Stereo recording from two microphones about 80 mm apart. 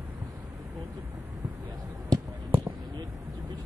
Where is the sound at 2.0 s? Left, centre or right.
Right.